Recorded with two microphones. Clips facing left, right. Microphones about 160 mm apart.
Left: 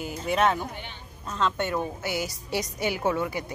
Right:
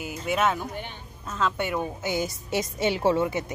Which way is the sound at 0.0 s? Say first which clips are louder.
Left 1 dB; 5° right (ahead or behind).